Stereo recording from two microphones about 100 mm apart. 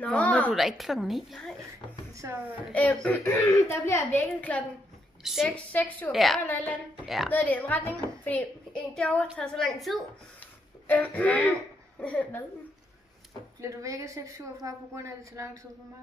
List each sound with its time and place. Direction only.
0.0 s a woman's voice: 15° left (ahead or behind)
0.5 s a woman's voice: centre (ahead or behind)
2.7 s a woman's voice: 15° left (ahead or behind)
3.6 s a woman's voice: 25° left (ahead or behind)
4.4 s a woman's voice: 15° left (ahead or behind)
5.2 s a woman's voice: centre (ahead or behind)
5.5 s a woman's voice: 15° left (ahead or behind)
6.1 s a woman's voice: centre (ahead or behind)
6.4 s a woman's voice: 15° left (ahead or behind); by 10.0 s centre (ahead or behind)
10.9 s a woman's voice: 15° left (ahead or behind)
13.6 s a woman's voice: 35° right (ahead or behind)